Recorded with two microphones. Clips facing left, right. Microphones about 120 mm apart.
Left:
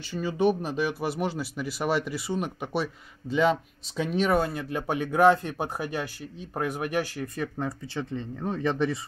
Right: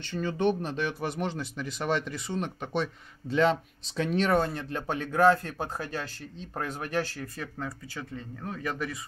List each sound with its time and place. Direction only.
0.1 s speech: 5° left (ahead or behind); by 8.9 s 25° left (ahead or behind)